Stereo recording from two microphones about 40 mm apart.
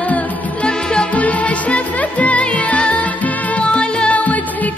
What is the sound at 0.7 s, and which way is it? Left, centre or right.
Music, left.